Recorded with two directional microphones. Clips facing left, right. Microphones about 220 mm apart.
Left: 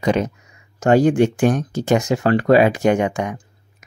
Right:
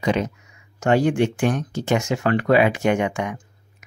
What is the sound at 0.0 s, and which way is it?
Speech, 45° left (ahead or behind).